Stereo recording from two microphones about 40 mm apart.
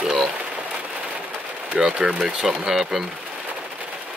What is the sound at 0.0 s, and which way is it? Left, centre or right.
Rain on surface, centre.